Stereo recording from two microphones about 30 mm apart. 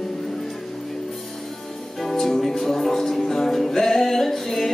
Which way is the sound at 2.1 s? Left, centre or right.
Centre.